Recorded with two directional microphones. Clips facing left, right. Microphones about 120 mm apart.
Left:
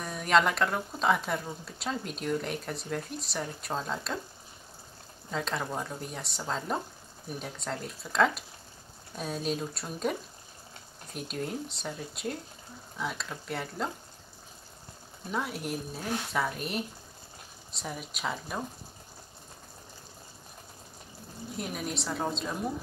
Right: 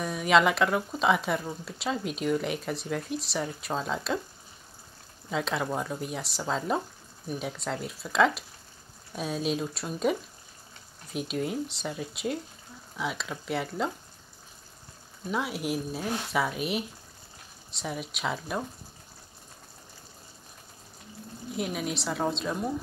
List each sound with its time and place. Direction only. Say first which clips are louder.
0.0 s speech: right 3 dB; 5° right (ahead or behind)
5.3 s speech: right 3 dB; 5° right (ahead or behind)
11.1 s speech: right 5 dB; 5° right (ahead or behind)
15.3 s speech: right 3 dB; 5° right (ahead or behind)
21.5 s speech: right 4 dB; 5° right (ahead or behind)